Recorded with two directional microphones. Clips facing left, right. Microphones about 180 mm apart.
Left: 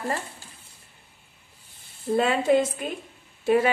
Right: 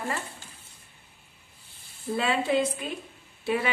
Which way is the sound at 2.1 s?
45° left (ahead or behind).